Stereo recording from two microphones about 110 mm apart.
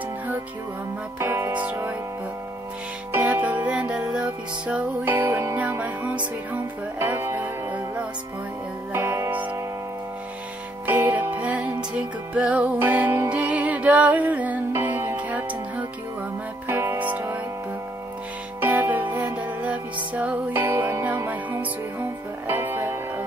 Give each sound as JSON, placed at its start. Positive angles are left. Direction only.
{"t": 1.2, "sound": "music", "side_deg": -20}
{"t": 3.1, "sound": "music", "side_deg": -20}
{"t": 10.9, "sound": "music", "side_deg": -15}
{"t": 16.6, "sound": "music", "side_deg": -20}
{"t": 18.6, "sound": "music", "side_deg": -20}